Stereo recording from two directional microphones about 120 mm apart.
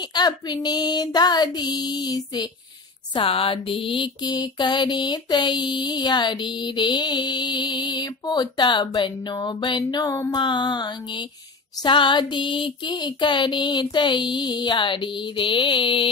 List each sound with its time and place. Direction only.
0.1 s mantra: 35° left (ahead or behind)
3.2 s mantra: 45° left (ahead or behind)